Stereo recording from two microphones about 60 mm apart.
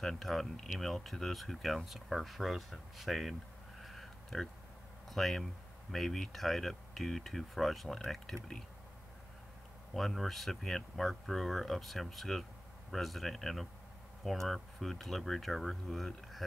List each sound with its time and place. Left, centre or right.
0.0 s speech: centre
3.8 s a sound: centre
5.1 s speech: centre
9.9 s speech: centre